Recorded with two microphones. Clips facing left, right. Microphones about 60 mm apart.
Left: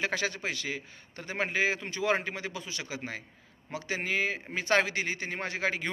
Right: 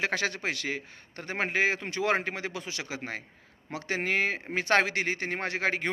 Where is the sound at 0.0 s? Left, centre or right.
Right.